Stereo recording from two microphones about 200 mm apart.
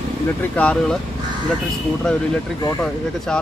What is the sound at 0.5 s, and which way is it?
Speech, 5° left (ahead or behind).